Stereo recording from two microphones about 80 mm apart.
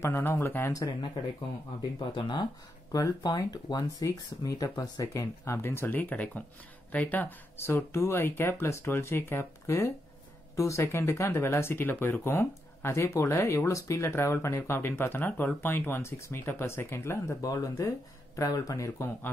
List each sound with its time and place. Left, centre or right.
0.0 s speech: left
2.1 s speech: left
2.9 s speech: left
3.3 s speech: left
17.4 s speech: left